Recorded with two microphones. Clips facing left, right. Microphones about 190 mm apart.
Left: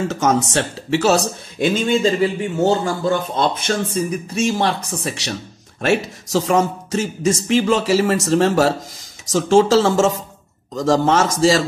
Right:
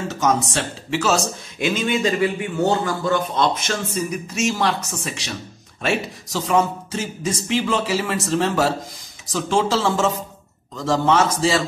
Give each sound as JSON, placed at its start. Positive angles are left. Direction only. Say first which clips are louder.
{"t": 0.1, "sound": "speech", "louder": "right 1 dB", "side_deg": 45}
{"t": 5.2, "sound": "speech", "louder": "left 4 dB", "side_deg": 45}